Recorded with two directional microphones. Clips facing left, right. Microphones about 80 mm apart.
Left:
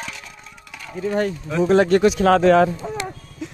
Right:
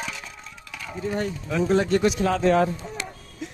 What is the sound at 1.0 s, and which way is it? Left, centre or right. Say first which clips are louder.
Speech: left 6 dB; left.